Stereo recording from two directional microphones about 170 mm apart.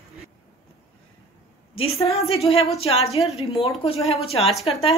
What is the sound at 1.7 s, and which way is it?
A woman's voice, 35° left (ahead or behind).